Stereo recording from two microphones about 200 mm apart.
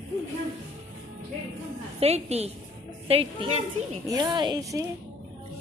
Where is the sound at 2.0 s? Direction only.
30° right (ahead or behind).